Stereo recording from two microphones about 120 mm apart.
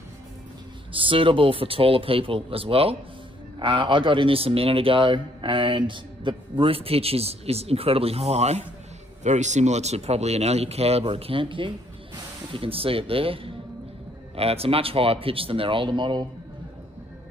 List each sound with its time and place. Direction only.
0.9 s a man's voice: 45° right (ahead or behind)
3.5 s a man's voice: 45° right (ahead or behind); by 8.6 s 65° right (ahead or behind)
9.2 s a man's voice: 80° right; by 16.3 s 40° right (ahead or behind)